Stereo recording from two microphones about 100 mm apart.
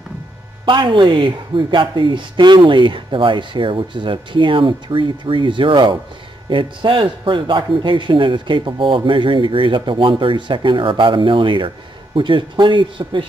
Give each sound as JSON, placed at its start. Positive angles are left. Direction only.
{"t": 0.7, "sound": "speech", "side_deg": -55}